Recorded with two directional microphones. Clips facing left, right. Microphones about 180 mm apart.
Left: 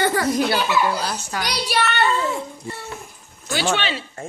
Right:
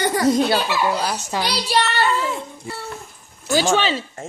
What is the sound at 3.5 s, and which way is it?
Speech, 40° right (ahead or behind).